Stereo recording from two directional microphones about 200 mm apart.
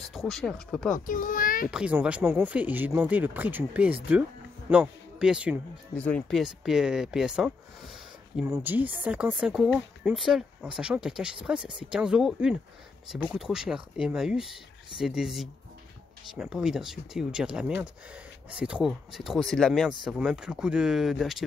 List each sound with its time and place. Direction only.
0.0 s speech: centre (ahead or behind)
0.9 s a child's voice: 40° left (ahead or behind)
1.7 s a man's voice: 5° right (ahead or behind)
5.9 s speech: 5° left (ahead or behind)